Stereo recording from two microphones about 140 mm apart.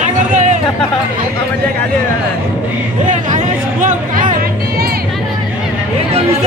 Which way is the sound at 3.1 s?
65° right (ahead or behind).